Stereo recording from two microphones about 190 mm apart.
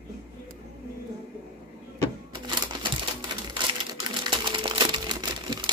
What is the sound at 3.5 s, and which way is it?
Crumpling, 25° right (ahead or behind).